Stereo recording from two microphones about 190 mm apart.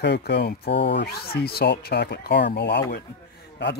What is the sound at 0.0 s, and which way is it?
Speech, 60° left (ahead or behind).